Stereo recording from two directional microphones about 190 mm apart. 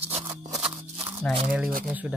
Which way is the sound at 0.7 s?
10° right (ahead or behind).